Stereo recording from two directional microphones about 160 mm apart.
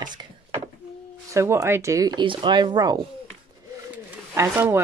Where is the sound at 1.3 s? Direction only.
15° right (ahead or behind).